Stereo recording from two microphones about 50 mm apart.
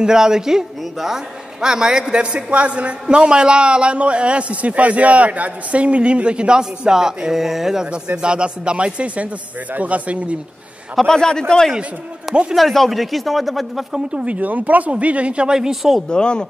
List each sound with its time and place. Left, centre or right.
0.0 s a man's voice: centre; by 10.3 s right
11.1 s a man's voice: centre
12.5 s speech: centre
13.9 s a man's voice: right; by 16.0 s centre
16.1 s a man's voice: centre